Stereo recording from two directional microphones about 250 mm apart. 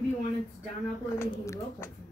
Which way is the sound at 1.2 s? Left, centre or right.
Centre.